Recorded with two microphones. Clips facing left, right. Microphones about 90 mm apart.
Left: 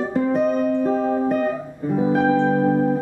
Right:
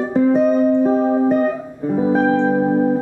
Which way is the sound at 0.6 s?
20° right (ahead or behind).